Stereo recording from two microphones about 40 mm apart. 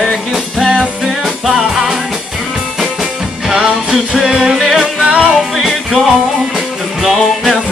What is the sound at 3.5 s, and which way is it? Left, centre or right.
Music, centre.